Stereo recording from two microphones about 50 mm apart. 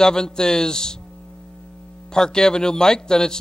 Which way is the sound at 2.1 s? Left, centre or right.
Centre.